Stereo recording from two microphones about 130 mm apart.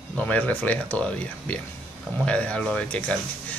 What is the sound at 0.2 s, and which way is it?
Speech, 10° left (ahead or behind).